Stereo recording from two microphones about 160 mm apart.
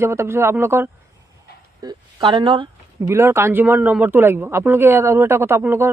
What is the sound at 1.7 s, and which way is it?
Speech, 25° right (ahead or behind).